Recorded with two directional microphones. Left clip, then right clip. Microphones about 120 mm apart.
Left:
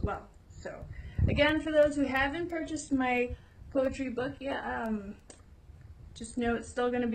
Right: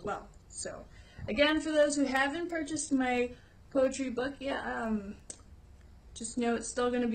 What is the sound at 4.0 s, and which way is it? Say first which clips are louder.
Speech: even; 35° right (ahead or behind).